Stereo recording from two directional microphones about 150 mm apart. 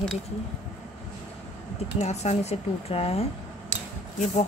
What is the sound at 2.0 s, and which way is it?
Speech, 50° left (ahead or behind).